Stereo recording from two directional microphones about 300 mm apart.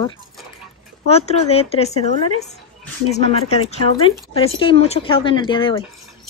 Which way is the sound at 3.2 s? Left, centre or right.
Centre.